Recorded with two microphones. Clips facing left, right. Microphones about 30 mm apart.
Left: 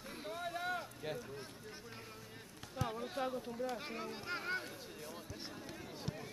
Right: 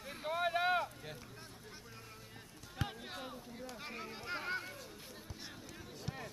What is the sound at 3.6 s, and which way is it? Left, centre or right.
Speech, centre.